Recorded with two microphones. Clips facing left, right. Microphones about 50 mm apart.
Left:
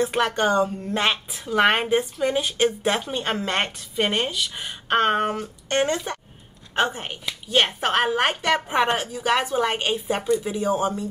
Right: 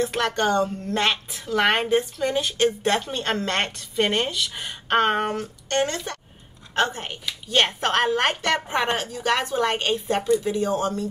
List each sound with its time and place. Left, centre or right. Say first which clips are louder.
0.0 s a woman's voice: left 1 dB; centre
5.7 s a woman's voice: left 2 dB; centre